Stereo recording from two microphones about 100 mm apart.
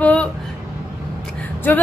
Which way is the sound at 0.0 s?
15° left (ahead or behind).